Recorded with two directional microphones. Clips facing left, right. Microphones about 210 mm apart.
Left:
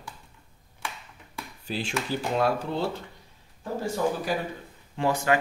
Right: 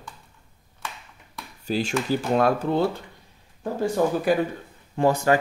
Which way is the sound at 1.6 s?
40° right (ahead or behind).